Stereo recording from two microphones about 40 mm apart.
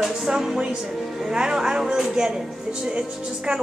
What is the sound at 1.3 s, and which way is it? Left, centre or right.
A woman's voice, centre.